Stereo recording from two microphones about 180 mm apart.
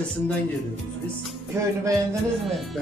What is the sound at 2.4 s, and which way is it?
Speech, centre (ahead or behind).